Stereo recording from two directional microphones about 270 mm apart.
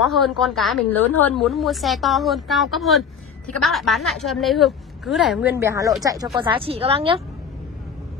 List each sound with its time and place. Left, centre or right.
0.0 s a woman's voice: centre; by 7.2 s right